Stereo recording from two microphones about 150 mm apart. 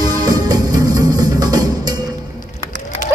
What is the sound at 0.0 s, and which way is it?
Music, 25° right (ahead or behind).